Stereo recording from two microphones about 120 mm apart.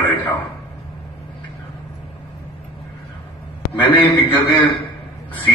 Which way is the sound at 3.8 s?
45° left (ahead or behind).